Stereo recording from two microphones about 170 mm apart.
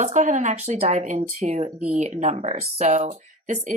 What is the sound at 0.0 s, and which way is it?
Speech, 45° right (ahead or behind).